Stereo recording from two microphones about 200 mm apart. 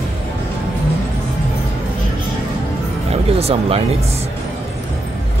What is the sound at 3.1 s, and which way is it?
Music, 30° right (ahead or behind).